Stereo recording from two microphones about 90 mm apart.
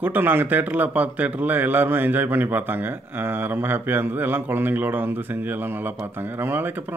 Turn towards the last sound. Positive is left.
turn(degrees=-20)  # may be behind; listen again after turning